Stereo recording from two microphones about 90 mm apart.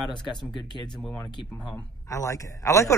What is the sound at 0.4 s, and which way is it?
Speech, 5° left (ahead or behind).